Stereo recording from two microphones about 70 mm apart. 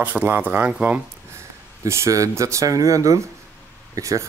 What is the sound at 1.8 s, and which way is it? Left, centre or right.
Speech, right.